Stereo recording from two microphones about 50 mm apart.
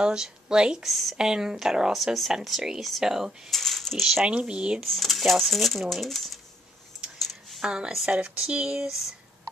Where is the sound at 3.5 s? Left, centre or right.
Centre.